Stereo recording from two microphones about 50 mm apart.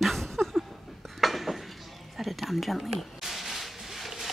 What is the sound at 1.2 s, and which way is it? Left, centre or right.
Dishes, centre.